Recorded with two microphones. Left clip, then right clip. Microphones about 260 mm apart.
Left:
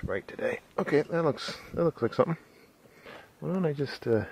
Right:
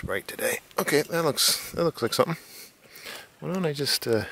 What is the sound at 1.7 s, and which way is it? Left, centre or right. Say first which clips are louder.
Speech: right 2 dB; centre.